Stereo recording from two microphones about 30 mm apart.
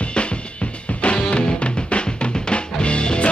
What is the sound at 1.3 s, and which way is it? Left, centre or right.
Music, left.